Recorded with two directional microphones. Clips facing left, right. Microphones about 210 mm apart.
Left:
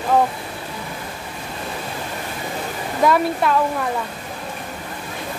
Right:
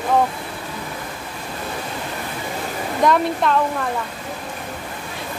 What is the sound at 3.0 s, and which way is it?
Speech, 5° left (ahead or behind).